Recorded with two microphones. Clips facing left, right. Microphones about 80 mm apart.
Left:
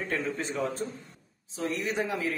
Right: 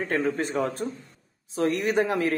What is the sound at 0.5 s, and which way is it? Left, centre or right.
A man's voice, right.